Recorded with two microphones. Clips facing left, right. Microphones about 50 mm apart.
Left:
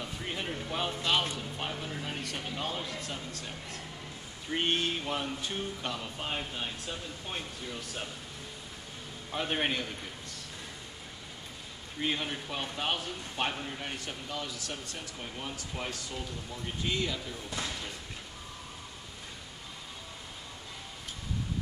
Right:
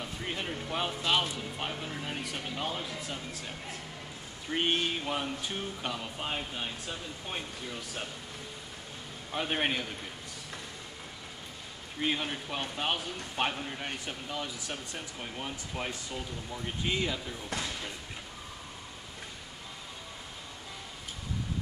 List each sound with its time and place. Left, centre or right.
0.0 s speech: centre
9.3 s speech: centre
12.0 s speech: centre